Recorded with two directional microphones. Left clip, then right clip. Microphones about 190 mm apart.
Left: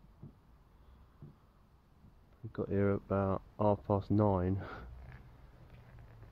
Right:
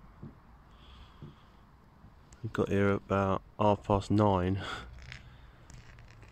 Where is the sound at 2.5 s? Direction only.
5° right (ahead or behind).